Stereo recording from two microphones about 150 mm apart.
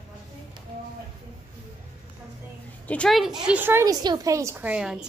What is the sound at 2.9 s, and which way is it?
A woman's voice, 5° left (ahead or behind).